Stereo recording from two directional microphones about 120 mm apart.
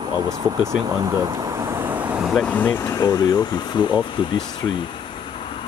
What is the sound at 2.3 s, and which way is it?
Speech, 10° left (ahead or behind).